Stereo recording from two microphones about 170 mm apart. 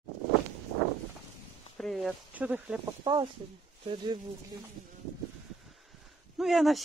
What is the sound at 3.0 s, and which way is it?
Speech, 25° right (ahead or behind).